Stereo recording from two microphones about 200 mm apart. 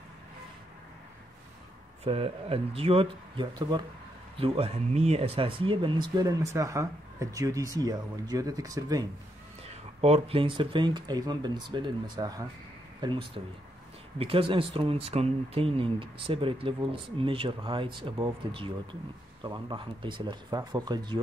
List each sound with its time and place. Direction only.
2.0 s speech: 30° right (ahead or behind)
10.0 s speech: 30° right (ahead or behind)